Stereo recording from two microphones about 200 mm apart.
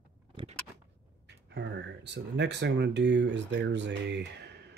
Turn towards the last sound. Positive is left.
turn(degrees=-55)  # may be behind; listen again after turning